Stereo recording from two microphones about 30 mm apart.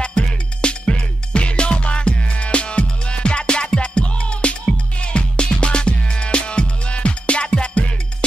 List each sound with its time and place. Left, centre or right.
0.0 s music: left